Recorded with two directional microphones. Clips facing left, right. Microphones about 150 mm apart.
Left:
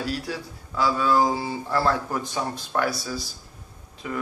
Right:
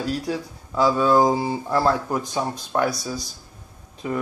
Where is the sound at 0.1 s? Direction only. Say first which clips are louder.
Right 4 dB; 20° right (ahead or behind).